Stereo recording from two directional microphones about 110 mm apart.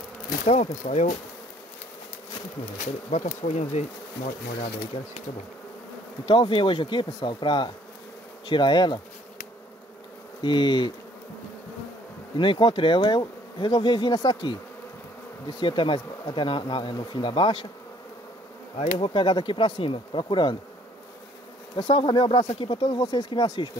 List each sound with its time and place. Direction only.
0.5 s speech: 90° left
2.8 s speech: 90° left
4.6 s speech: 60° left (ahead or behind)
6.2 s speech: 50° left (ahead or behind)
10.4 s speech: 45° left (ahead or behind)
12.4 s speech: 50° left (ahead or behind)
15.6 s speech: 50° left (ahead or behind)
18.8 s speech: 55° left (ahead or behind)
21.7 s speech: 50° left (ahead or behind)